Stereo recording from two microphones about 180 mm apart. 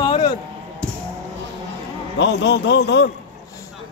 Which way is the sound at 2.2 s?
75° left (ahead or behind).